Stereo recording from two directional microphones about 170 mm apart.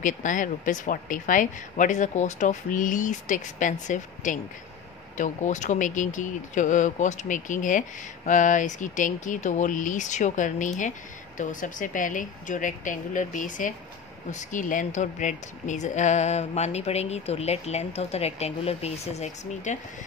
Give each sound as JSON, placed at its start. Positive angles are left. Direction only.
{"t": 0.0, "sound": "speech", "side_deg": 50}